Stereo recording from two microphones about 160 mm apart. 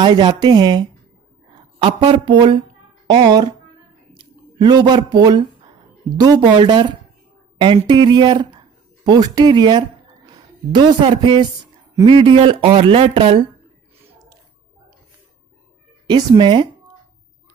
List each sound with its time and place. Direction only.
0.0 s speech: 30° right (ahead or behind)
2.0 s speech: 30° right (ahead or behind)
4.2 s a sound: 25° right (ahead or behind)
6.1 s speech: 25° right (ahead or behind)
16.1 s speech: 30° right (ahead or behind)